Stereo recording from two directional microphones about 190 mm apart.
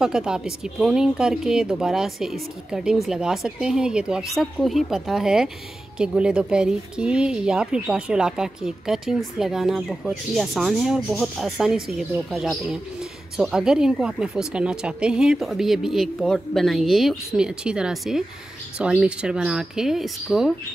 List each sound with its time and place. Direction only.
0.0 s speech: 5° right (ahead or behind)